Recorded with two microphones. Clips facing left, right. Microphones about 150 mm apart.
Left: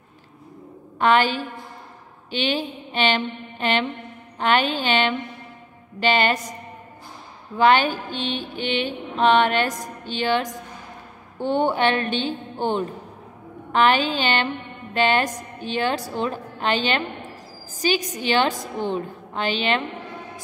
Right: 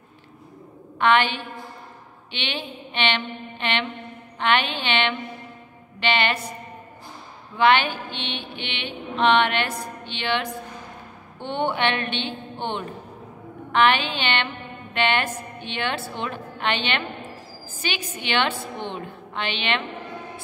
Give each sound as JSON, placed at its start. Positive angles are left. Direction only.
{"t": 0.9, "sound": "mantra", "side_deg": 40}
{"t": 7.5, "sound": "mantra", "side_deg": 40}